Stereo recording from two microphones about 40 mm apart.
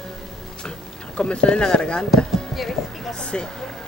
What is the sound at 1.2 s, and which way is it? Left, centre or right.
Speech, left.